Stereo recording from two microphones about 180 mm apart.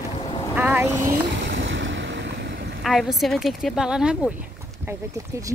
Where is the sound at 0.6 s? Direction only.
10° right (ahead or behind).